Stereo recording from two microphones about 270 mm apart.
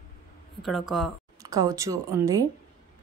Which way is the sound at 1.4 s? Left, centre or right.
Centre.